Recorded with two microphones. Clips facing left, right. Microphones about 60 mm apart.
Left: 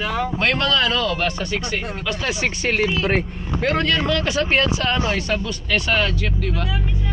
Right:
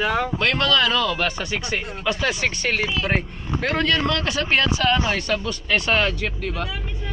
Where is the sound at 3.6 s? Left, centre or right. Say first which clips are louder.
Left 1 dB; centre.